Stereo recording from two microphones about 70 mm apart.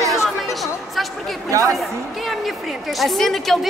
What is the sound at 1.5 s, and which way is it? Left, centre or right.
Speech, right.